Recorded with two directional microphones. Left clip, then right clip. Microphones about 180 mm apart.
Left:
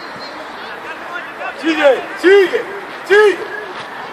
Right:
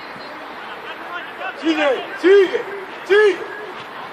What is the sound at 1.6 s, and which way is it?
Speech, 40° right (ahead or behind).